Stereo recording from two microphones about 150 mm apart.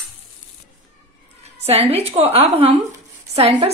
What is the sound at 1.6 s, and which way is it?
A woman's voice, 45° right (ahead or behind).